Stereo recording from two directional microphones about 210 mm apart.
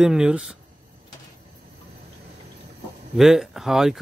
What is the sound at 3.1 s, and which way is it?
Speech, centre (ahead or behind).